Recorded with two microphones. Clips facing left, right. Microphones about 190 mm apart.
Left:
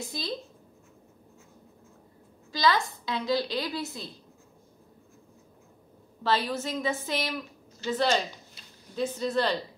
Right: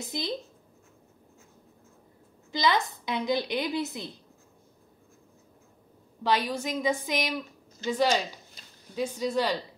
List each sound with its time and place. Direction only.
0.0 s a woman's voice: 20° right (ahead or behind)
2.5 s a woman's voice: 20° right (ahead or behind)
6.2 s a woman's voice: 15° right (ahead or behind)